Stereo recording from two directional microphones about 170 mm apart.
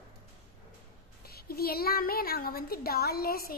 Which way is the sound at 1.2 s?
65° left (ahead or behind).